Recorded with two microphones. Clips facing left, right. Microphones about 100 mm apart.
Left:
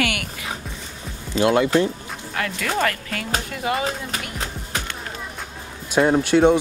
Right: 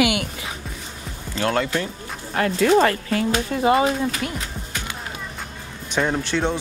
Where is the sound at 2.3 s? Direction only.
30° right (ahead or behind).